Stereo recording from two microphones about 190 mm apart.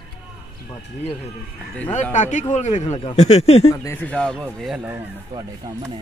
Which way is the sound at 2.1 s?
40° left (ahead or behind).